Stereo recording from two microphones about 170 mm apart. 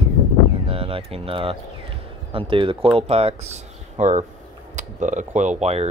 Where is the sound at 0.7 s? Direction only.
35° right (ahead or behind).